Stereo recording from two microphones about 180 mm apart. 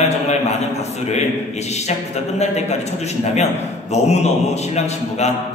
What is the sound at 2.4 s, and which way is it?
Speech, 40° left (ahead or behind).